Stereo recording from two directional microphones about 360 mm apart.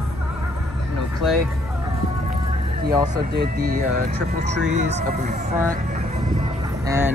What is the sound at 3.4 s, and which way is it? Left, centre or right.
Speech, right.